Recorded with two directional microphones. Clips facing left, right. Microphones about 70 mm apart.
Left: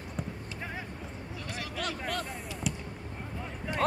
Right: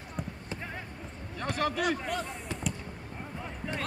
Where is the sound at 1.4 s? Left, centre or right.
Right.